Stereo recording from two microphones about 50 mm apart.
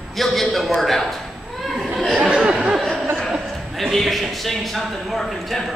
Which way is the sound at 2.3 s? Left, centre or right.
Centre.